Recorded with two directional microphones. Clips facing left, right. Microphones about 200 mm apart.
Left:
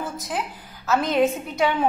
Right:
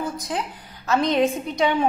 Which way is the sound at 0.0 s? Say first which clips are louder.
Right 2 dB; 5° left (ahead or behind).